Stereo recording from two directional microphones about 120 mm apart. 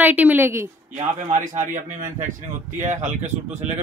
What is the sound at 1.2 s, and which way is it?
Speech, 80° right.